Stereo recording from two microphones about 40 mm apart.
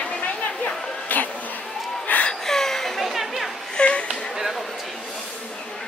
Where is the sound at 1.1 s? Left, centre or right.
Left.